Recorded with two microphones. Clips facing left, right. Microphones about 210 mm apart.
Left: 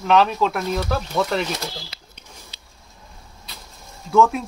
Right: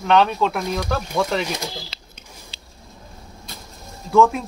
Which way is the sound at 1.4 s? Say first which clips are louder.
Even; 15° right (ahead or behind).